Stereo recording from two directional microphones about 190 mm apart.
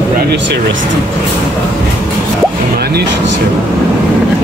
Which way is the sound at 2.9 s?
60° right (ahead or behind).